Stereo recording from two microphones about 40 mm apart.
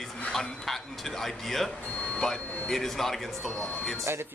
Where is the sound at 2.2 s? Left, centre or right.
Centre.